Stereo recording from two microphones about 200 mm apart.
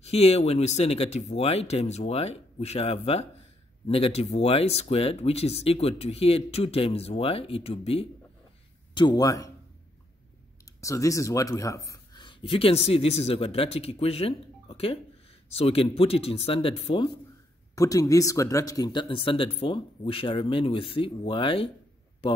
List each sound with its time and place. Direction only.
0.0 s speech: 30° left (ahead or behind)
10.6 s speech: 15° left (ahead or behind)